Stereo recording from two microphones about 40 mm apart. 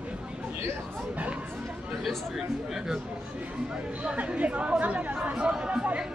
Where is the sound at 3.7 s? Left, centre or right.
Right.